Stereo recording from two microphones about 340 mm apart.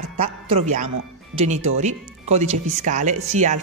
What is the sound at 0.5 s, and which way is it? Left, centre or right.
Speech, centre.